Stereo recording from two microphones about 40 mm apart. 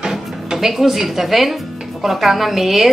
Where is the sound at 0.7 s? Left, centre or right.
Centre.